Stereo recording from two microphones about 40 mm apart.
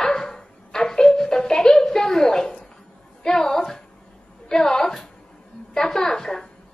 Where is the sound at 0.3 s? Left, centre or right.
Centre.